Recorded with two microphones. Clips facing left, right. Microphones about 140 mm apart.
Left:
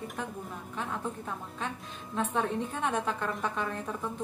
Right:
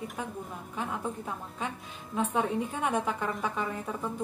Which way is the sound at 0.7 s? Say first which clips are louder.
Right 1 dB; 10° right (ahead or behind).